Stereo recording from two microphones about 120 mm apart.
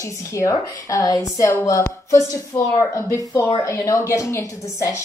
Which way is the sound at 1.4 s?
15° left (ahead or behind).